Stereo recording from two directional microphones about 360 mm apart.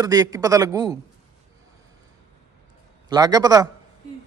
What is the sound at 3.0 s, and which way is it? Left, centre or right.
Speech, centre.